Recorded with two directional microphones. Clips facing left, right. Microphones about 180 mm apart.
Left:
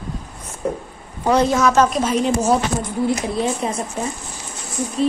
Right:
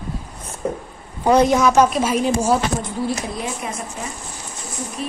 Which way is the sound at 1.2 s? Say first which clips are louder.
Right 2 dB; 15° right (ahead or behind).